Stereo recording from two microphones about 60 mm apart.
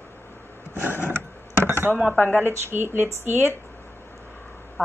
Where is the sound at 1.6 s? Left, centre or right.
Right.